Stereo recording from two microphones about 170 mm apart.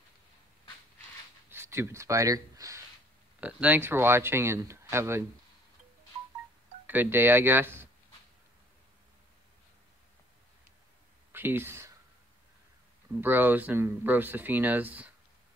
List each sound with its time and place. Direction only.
1.5 s speech: 15° right (ahead or behind)
3.3 s speech: 10° right (ahead or behind)
6.9 s speech: 10° right (ahead or behind)
11.3 s speech: 10° right (ahead or behind)
13.2 s speech: 10° right (ahead or behind)